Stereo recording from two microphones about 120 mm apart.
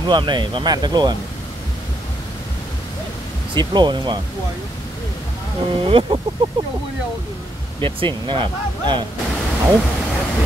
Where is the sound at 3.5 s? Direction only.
40° right (ahead or behind).